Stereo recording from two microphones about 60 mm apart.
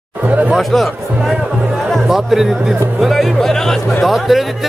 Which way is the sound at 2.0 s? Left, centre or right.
Centre.